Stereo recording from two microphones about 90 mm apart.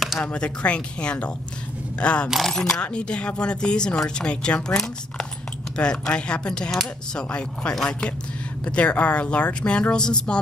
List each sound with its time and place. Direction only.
0.2 s speech: 15° left (ahead or behind)
2.2 s speech: 5° right (ahead or behind)
2.5 s speech: 5° left (ahead or behind)